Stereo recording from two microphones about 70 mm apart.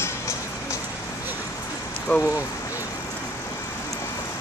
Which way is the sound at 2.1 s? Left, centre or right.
Left.